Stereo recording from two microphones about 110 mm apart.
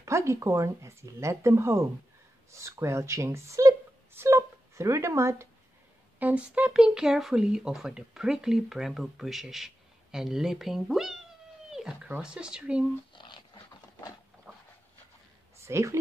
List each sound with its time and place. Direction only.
0.0 s speech: 25° right (ahead or behind)
6.1 s speech: 15° right (ahead or behind)
11.7 s cat: 5° right (ahead or behind)
12.1 s speech: 10° right (ahead or behind)
13.1 s a sound: 45° left (ahead or behind)
14.5 s a sound: 20° right (ahead or behind)
15.6 s speech: 25° right (ahead or behind)